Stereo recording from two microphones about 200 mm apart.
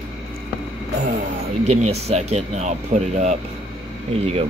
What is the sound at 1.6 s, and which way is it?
Speech, 35° right (ahead or behind).